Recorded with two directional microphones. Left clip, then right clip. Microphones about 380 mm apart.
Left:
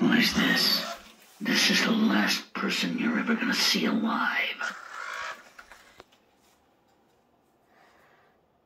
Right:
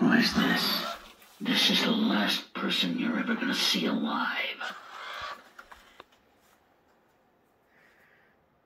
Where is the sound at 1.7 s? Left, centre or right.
Centre.